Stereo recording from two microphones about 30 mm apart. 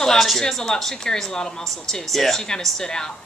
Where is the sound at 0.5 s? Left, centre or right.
Centre.